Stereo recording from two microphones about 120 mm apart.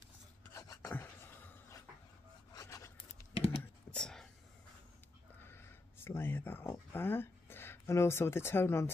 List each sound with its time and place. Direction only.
0.5 s filing: 25° left (ahead or behind)
3.3 s a sound: 50° left (ahead or behind)
3.9 s whispering: 5° left (ahead or behind)
5.4 s speech: 20° left (ahead or behind)